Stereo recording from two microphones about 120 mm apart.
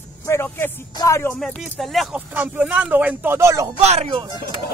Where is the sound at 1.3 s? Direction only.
5° left (ahead or behind).